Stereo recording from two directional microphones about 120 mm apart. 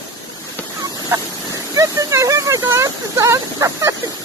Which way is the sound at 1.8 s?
25° right (ahead or behind).